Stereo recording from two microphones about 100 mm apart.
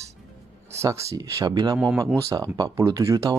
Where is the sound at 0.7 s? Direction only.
35° right (ahead or behind).